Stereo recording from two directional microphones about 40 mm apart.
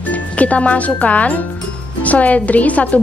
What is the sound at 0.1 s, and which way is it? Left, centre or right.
A woman's voice, left.